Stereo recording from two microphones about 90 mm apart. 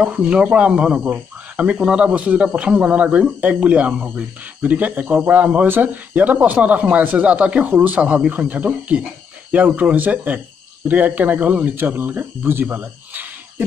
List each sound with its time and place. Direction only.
0.0 s speech: 15° right (ahead or behind)